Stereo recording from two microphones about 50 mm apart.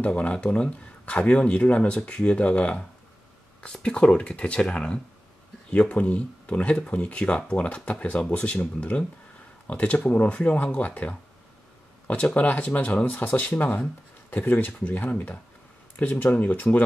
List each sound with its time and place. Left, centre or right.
0.0 s speech: left
12.4 s speech: left